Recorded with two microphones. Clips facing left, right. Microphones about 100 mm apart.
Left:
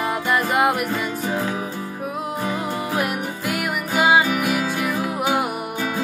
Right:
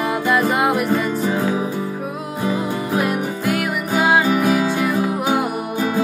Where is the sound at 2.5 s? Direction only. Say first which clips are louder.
Right 4 dB; centre (ahead or behind).